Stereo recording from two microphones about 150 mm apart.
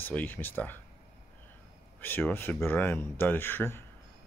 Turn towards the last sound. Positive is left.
turn(degrees=15)  # may be behind; listen again after turning